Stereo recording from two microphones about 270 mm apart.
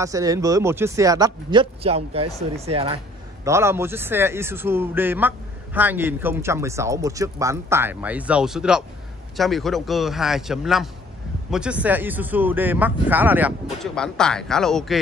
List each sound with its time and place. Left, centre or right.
0.0 s a man's voice: centre
3.4 s a man's voice: centre